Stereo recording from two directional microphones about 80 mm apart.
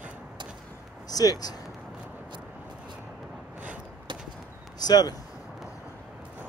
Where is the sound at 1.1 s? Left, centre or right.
Left.